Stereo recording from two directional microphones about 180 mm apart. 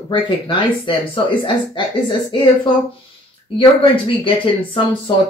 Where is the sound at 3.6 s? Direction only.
30° left (ahead or behind).